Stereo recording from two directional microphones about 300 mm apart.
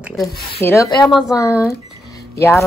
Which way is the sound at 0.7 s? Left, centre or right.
Centre.